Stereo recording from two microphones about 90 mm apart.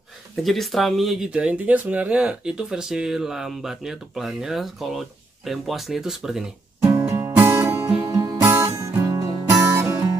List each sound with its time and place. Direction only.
0.4 s speech: centre (ahead or behind)
1.3 s speech: 15° right (ahead or behind)
6.8 s music: 30° right (ahead or behind)
7.4 s music: 30° right (ahead or behind)
8.0 s music: 40° right (ahead or behind)
8.5 s music: 30° right (ahead or behind)